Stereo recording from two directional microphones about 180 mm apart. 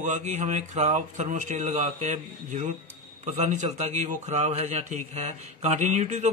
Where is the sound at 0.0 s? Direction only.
40° right (ahead or behind).